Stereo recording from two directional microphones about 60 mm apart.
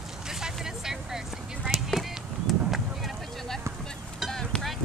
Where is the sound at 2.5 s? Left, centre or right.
Centre.